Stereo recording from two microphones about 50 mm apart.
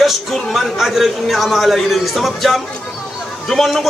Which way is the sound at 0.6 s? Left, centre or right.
Centre.